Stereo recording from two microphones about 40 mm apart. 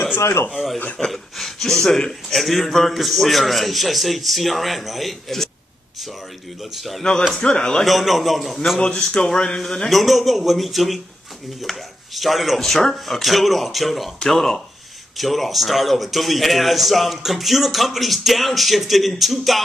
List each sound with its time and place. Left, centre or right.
0.5 s a man's voice: centre
6.6 s a man's voice: centre
7.0 s a man's voice: centre
7.8 s a man's voice: centre
8.7 s a man's voice: centre
12.5 s a man's voice: centre